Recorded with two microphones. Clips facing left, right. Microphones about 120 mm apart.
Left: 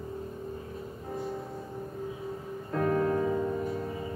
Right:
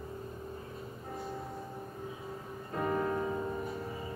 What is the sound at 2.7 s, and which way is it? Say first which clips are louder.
Music: left 5 dB; 90° left.